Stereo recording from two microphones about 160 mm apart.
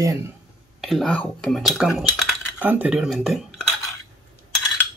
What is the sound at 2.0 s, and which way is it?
Cutlery, centre (ahead or behind).